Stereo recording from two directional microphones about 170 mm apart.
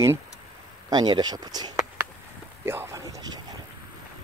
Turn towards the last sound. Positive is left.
turn(degrees=-20)  # may be behind; listen again after turning